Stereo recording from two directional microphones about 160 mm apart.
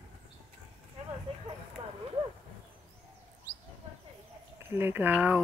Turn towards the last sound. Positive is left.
turn(degrees=-10)  # may be behind; listen again after turning